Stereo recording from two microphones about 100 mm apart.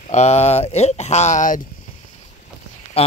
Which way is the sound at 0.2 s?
90° left.